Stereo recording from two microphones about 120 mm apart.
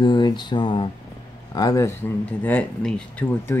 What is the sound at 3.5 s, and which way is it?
Speech, 20° left (ahead or behind).